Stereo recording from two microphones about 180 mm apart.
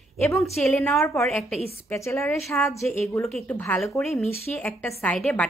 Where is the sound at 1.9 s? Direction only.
15° left (ahead or behind).